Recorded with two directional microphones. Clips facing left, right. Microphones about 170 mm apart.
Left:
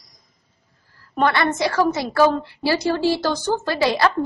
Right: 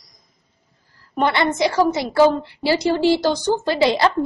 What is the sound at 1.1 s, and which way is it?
A woman's voice, 20° right (ahead or behind).